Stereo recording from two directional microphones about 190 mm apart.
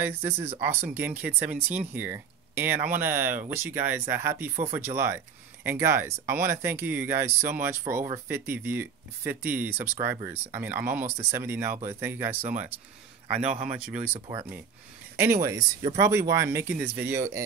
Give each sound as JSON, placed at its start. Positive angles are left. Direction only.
{"t": 0.0, "sound": "speech", "side_deg": -10}
{"t": 13.5, "sound": "speech", "side_deg": -40}
{"t": 15.1, "sound": "speech", "side_deg": -10}